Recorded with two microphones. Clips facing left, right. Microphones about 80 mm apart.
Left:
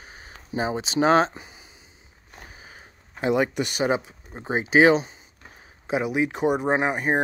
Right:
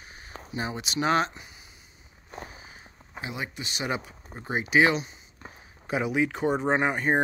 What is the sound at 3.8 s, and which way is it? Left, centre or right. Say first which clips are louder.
Speech: left 6 dB; left.